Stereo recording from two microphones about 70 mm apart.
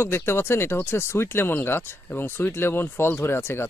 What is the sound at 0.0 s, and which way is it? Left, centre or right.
Speech, left.